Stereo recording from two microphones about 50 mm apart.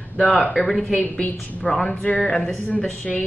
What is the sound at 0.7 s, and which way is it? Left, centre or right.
Speech, centre.